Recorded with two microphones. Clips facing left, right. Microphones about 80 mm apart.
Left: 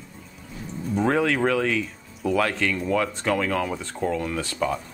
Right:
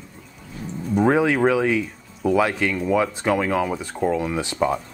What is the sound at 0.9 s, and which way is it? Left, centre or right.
Speech, centre.